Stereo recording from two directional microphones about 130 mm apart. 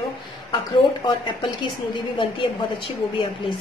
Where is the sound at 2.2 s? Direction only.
40° left (ahead or behind).